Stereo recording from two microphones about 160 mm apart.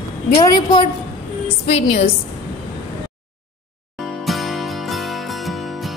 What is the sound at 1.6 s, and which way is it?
Speech, 40° left (ahead or behind).